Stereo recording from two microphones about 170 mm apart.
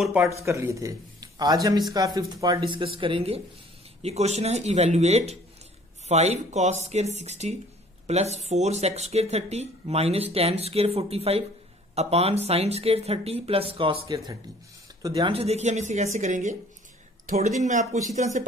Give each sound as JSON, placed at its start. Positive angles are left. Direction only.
{"t": 0.0, "sound": "speech", "side_deg": 0}
{"t": 0.5, "sound": "speech", "side_deg": -15}
{"t": 14.0, "sound": "speech", "side_deg": -20}
{"t": 15.3, "sound": "speech", "side_deg": -40}